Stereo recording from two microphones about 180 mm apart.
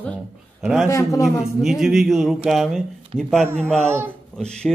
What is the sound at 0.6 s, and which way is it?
Speech, centre (ahead or behind).